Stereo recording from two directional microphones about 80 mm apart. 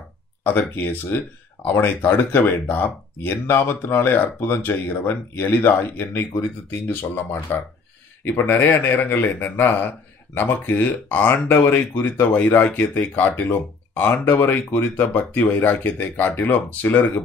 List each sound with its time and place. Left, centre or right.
0.4 s speech: left